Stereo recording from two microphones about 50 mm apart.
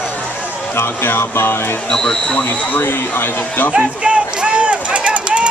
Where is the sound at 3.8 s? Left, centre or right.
Right.